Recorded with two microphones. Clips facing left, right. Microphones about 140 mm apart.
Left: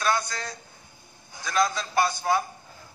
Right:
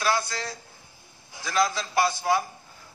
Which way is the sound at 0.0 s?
30° right (ahead or behind).